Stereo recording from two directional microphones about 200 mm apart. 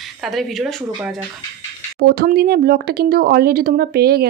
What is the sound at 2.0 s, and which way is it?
Speech, 50° right (ahead or behind).